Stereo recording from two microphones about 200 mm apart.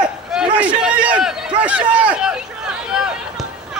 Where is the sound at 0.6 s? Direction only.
5° right (ahead or behind).